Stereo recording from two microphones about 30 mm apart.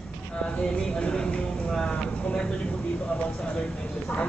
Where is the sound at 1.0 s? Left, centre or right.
Left.